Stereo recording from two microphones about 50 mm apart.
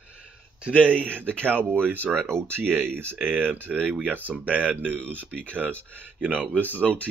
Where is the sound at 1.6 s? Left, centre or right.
Right.